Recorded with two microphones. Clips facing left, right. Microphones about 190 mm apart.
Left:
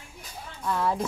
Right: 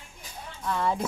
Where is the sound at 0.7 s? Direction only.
Centre (ahead or behind).